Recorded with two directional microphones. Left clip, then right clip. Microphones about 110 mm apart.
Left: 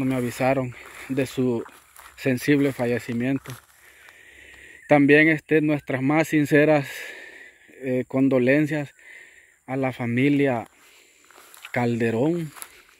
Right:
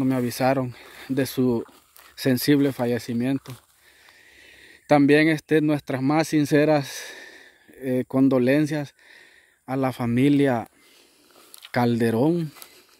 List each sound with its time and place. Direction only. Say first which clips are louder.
0.0 s speech: right 1 dB; 50° right (ahead or behind); by 1.6 s 70° right (ahead or behind)
2.1 s speech: right 1 dB; 55° right (ahead or behind); by 3.3 s 40° right (ahead or behind)
3.3 s speech: even; 30° left (ahead or behind)
4.4 s speech: left 4 dB; 25° right (ahead or behind); by 5.9 s 40° right (ahead or behind)
5.9 s speech: left 1 dB; 30° right (ahead or behind); by 8.4 s 50° right (ahead or behind)
8.4 s speech: left 1 dB; 35° right (ahead or behind)
9.7 s speech: right 1 dB; 50° right (ahead or behind)
11.7 s speech: right 1 dB; 60° right (ahead or behind); by 12.4 s 80° right